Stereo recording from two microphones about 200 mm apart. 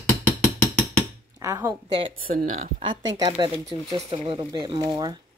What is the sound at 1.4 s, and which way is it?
Dishes, 15° right (ahead or behind).